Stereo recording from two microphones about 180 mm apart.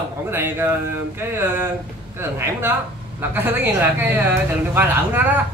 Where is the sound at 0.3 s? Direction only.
10° right (ahead or behind).